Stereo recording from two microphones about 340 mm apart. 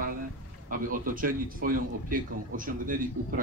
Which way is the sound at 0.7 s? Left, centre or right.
Right.